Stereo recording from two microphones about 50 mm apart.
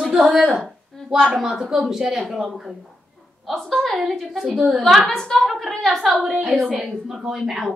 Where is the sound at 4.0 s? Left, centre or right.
Centre.